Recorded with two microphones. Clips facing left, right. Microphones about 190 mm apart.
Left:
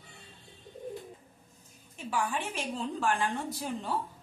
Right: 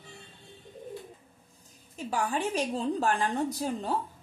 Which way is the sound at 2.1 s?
40° right (ahead or behind).